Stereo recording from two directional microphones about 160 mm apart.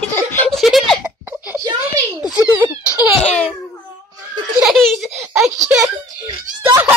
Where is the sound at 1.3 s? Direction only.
10° right (ahead or behind).